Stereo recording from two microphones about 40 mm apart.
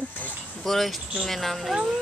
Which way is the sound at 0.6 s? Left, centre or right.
Centre.